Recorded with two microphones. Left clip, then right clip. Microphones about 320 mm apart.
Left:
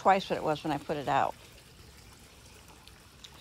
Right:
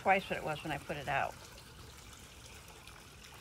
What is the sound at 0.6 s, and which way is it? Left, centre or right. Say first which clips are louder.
Speech: left 7 dB; left.